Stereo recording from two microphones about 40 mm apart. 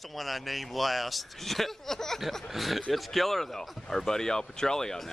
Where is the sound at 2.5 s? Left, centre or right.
Centre.